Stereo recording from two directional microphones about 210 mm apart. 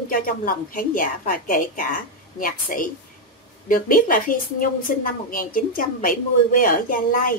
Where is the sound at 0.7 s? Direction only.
40° left (ahead or behind).